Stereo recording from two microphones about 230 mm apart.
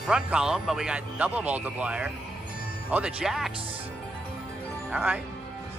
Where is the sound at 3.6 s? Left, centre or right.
Right.